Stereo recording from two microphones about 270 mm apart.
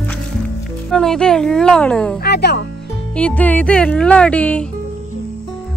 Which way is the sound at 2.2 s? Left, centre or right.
Left.